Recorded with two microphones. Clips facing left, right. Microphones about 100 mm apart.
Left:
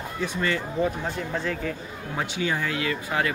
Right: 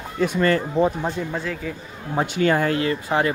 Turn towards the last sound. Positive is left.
turn(degrees=-30)  # may be behind; listen again after turning